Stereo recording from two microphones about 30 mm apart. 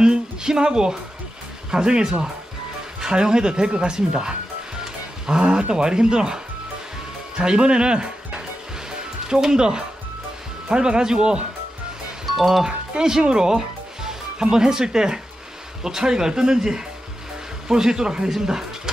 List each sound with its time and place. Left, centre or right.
0.0 s music: right
1.7 s speech: right
5.4 s speech: right
9.3 s speech: right
12.3 s speech: centre
12.6 s speech: right
13.6 s music: right
15.8 s speech: centre